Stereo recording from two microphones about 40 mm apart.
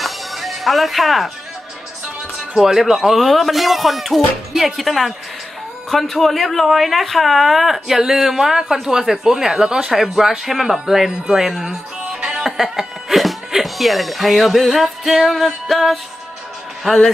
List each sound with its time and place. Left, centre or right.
0.0 s music: centre
2.3 s speech: centre
12.4 s music: centre
13.5 s speech: centre